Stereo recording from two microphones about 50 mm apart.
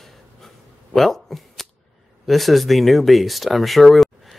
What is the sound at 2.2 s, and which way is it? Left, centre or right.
Speech, centre.